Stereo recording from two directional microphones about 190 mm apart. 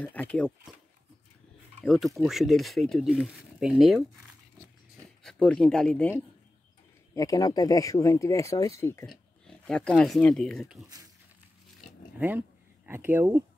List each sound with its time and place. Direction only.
0.0 s speech: 5° left (ahead or behind)
1.8 s speech: centre (ahead or behind)
5.2 s speech: 5° left (ahead or behind)
7.2 s speech: 20° left (ahead or behind); by 10.8 s centre (ahead or behind)
12.2 s speech: 10° right (ahead or behind)